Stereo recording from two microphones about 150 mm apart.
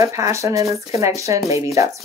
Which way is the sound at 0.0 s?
20° right (ahead or behind).